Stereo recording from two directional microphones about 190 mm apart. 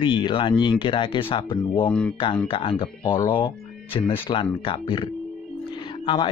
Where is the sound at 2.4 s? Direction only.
30° left (ahead or behind).